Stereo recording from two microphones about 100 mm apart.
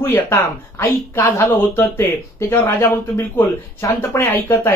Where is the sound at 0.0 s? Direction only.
25° left (ahead or behind).